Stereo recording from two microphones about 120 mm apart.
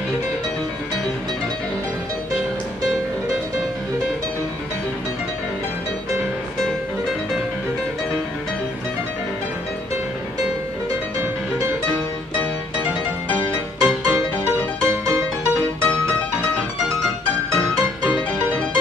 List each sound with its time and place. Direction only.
10.9 s music: 25° right (ahead or behind)
13.7 s music: 10° right (ahead or behind)
14.9 s music: 30° right (ahead or behind)
15.8 s music: 10° left (ahead or behind)